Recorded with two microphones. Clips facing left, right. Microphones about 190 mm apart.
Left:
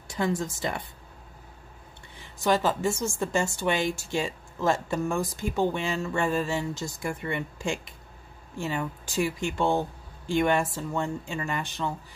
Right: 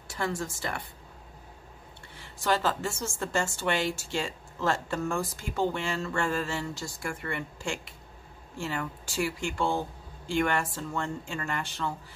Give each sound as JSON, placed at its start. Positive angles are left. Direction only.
{"t": 0.1, "sound": "speech", "side_deg": 20}
{"t": 2.1, "sound": "a woman's voice", "side_deg": 15}